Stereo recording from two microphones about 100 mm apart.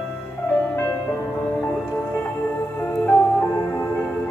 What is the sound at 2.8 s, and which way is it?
Music, 20° left (ahead or behind).